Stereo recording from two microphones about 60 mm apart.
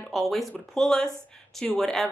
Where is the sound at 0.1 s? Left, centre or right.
Centre.